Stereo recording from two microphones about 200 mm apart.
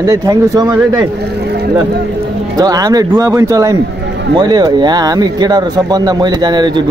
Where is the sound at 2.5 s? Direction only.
20° right (ahead or behind).